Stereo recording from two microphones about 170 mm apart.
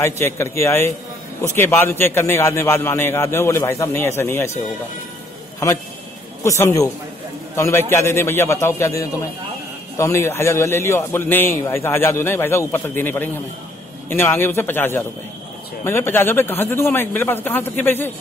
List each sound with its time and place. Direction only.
0.0 s a man's voice: 15° left (ahead or behind)
6.4 s a man's voice: 15° left (ahead or behind)